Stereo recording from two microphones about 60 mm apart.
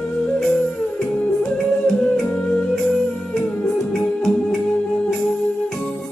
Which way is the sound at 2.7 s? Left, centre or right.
Centre.